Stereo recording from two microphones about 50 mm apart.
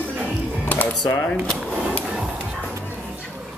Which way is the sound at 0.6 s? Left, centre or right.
Left.